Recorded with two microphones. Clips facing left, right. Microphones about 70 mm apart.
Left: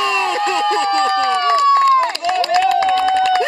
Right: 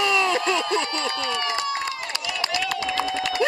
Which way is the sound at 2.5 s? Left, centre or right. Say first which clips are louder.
Left 13 dB; left.